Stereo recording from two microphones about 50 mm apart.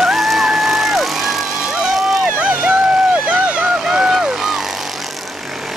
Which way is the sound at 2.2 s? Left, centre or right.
Right.